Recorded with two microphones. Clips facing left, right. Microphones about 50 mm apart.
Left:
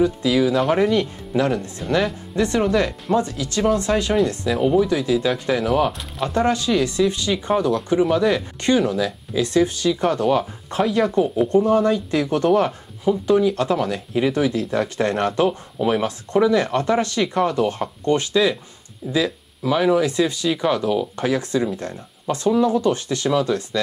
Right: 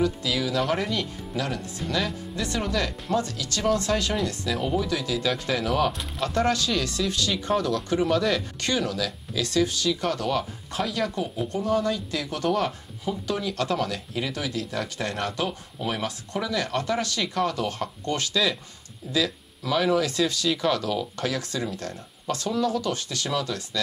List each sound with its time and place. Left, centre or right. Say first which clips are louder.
0.2 s speech: left 8 dB; left